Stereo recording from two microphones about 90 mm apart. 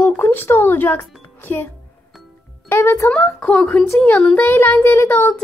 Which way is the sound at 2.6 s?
30° left (ahead or behind).